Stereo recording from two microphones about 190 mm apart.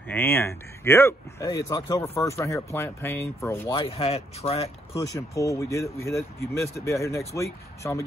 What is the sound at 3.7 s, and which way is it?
Speech, 30° left (ahead or behind).